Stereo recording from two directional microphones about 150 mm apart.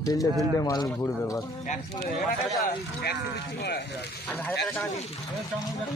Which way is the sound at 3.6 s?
90° left.